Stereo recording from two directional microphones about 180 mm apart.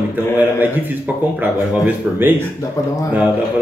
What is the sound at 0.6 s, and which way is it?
Speech, 10° right (ahead or behind).